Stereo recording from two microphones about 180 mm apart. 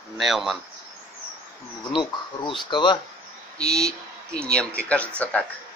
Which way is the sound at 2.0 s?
25° left (ahead or behind).